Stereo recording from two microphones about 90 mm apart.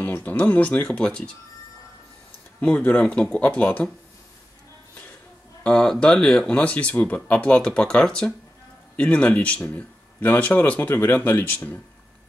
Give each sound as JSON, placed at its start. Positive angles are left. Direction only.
{"t": 0.0, "sound": "speech", "side_deg": 20}
{"t": 2.6, "sound": "speech", "side_deg": 15}
{"t": 5.6, "sound": "speech", "side_deg": 10}